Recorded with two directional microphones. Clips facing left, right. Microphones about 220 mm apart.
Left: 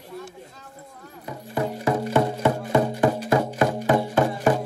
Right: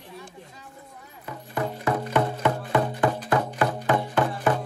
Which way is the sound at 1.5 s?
25° left (ahead or behind).